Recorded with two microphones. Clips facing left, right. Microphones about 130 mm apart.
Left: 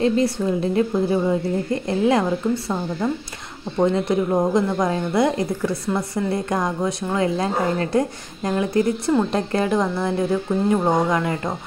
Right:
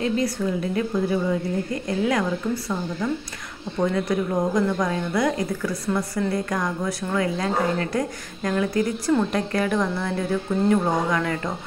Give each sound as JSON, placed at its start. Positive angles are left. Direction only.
{"t": 0.0, "sound": "a woman's voice", "side_deg": 30}